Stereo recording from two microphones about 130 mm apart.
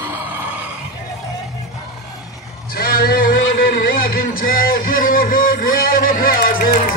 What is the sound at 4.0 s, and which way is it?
Music, 90° left.